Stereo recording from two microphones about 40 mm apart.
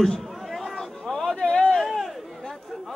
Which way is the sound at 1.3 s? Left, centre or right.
Left.